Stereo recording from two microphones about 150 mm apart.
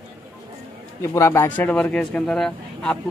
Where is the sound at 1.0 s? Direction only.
20° left (ahead or behind).